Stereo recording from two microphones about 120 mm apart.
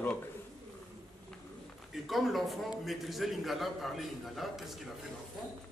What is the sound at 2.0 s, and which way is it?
A man's voice, centre (ahead or behind).